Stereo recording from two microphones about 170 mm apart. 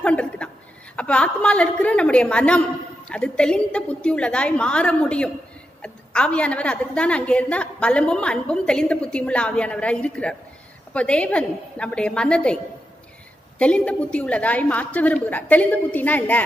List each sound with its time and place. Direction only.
0.0 s chuckle: 5° left (ahead or behind)
0.9 s a woman's voice: 5° left (ahead or behind)
13.6 s a woman's voice: 5° left (ahead or behind)